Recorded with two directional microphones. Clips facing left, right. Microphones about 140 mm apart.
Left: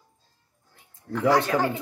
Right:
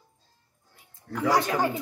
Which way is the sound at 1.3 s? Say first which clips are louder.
Left 1 dB; 15° right (ahead or behind).